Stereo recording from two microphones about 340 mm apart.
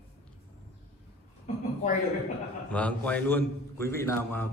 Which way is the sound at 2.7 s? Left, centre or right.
Centre.